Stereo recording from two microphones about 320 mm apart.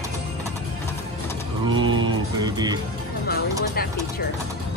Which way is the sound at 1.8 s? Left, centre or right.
Right.